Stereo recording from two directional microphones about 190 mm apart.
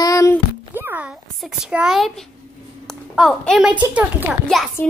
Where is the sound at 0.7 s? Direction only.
10° right (ahead or behind).